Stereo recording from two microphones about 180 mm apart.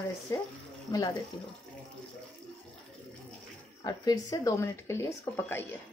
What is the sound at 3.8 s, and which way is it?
Speech, 20° left (ahead or behind).